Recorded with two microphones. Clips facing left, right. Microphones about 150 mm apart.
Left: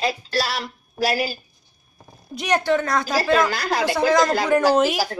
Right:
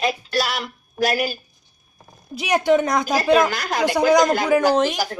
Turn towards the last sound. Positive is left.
turn(degrees=5)  # may be behind; listen again after turning